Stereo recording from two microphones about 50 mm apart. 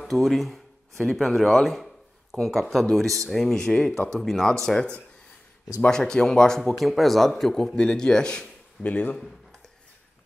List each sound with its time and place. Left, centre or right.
0.0 s a man's voice: centre
5.9 s a man's voice: centre
6.8 s a man's voice: centre
8.8 s speech: left
9.2 s a sound: centre